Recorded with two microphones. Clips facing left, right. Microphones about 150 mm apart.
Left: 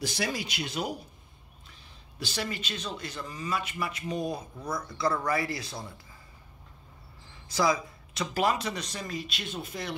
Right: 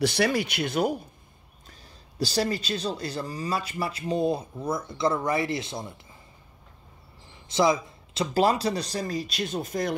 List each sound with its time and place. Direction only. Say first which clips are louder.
0.0 s speech: right 8 dB; 65° right (ahead or behind)
1.7 s speech: right 5 dB; 35° right (ahead or behind)
7.4 s speech: right 4 dB; 25° right (ahead or behind); by 9.9 s 45° right (ahead or behind)